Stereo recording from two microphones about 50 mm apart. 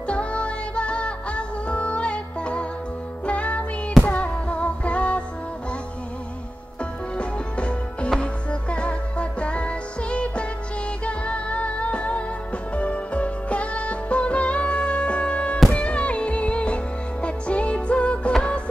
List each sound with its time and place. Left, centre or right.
0.0 s music: left
4.0 s a sound: left
6.8 s music: left